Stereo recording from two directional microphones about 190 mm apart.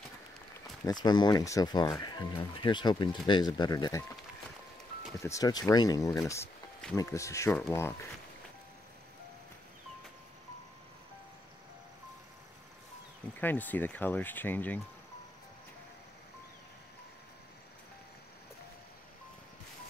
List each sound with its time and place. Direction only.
0.8 s speech: 20° left (ahead or behind)
5.2 s speech: 15° left (ahead or behind)
13.4 s speech: 10° left (ahead or behind)